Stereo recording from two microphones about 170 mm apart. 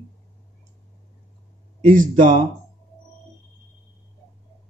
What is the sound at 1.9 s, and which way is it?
Speech, 50° right (ahead or behind).